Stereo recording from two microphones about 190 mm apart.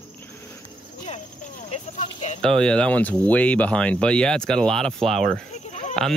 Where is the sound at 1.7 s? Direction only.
35° left (ahead or behind).